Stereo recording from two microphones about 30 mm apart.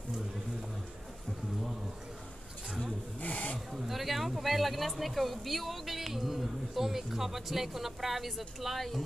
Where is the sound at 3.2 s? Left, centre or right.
Left.